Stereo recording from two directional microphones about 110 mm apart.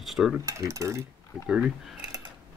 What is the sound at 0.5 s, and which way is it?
Speech, 25° right (ahead or behind).